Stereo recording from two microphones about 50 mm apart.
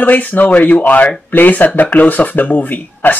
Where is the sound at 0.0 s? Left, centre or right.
Left.